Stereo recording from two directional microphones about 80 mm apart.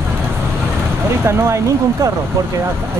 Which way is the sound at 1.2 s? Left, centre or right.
Right.